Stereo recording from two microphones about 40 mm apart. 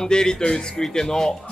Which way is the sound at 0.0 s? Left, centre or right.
Centre.